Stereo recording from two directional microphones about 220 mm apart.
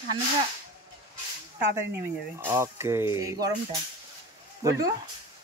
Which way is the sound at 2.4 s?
10° right (ahead or behind).